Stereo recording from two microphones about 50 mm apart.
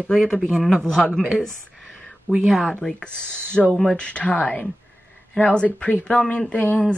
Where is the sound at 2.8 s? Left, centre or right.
Centre.